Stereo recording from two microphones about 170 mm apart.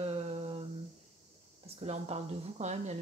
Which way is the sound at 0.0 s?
40° right (ahead or behind).